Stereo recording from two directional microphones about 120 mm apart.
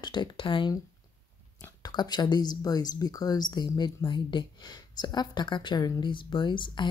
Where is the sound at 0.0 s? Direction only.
40° left (ahead or behind).